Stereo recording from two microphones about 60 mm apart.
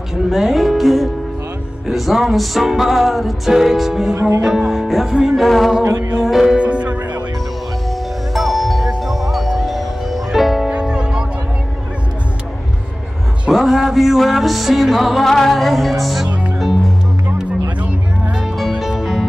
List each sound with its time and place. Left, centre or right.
0.1 s music: centre
4.4 s speech: centre
5.5 s music: centre
6.5 s music: centre
8.3 s music: centre
10.7 s music: centre
13.5 s music: centre
17.7 s music: right
18.8 s music: centre